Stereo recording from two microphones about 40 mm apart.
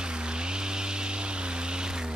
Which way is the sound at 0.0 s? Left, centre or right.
Right.